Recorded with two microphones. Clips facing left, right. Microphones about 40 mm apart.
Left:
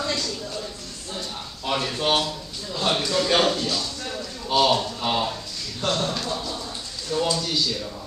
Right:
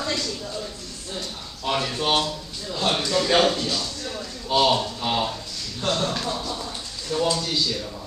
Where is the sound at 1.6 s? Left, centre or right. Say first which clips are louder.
Even; centre.